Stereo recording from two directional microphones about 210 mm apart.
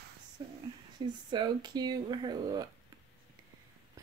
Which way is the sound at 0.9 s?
20° right (ahead or behind).